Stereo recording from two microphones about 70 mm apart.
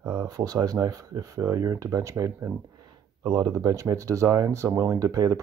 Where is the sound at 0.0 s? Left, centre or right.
Right.